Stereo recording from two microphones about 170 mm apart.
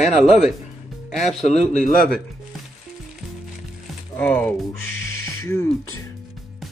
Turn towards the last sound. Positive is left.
turn(degrees=15)  # may be behind; listen again after turning